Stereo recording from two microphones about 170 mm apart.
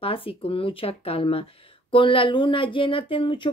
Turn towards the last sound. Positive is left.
turn(degrees=30)  # may be behind; listen again after turning